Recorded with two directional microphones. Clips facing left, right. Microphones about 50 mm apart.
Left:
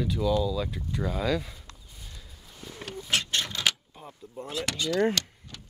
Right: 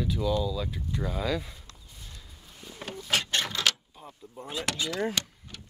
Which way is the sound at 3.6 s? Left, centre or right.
Centre.